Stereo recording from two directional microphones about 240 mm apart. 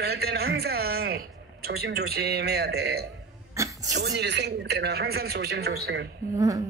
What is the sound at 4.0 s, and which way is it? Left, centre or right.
Speech, right.